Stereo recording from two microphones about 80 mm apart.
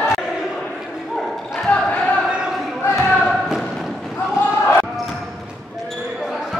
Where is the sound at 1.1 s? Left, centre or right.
Centre.